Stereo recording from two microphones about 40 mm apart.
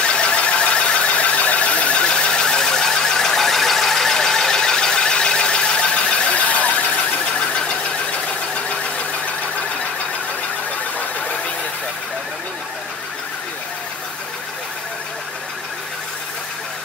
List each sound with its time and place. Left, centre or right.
0.0 s squeal: left
6.3 s squeal: left
7.3 s a sound: left
11.0 s squeal: left